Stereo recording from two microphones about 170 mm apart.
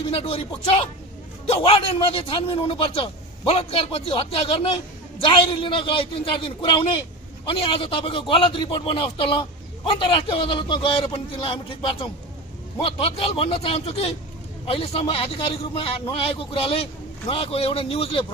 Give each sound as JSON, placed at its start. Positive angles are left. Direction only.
{"t": 0.1, "sound": "a man's voice", "side_deg": 35}
{"t": 1.4, "sound": "a man's voice", "side_deg": 30}
{"t": 12.8, "sound": "a man's voice", "side_deg": 35}